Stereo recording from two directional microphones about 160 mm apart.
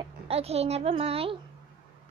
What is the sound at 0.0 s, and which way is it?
A woman's voice, 40° right (ahead or behind).